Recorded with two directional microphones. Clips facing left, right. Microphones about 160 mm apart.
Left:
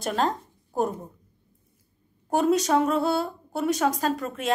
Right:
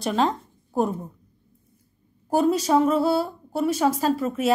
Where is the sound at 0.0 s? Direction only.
Centre (ahead or behind).